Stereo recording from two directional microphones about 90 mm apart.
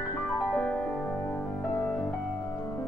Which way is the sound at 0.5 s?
15° left (ahead or behind).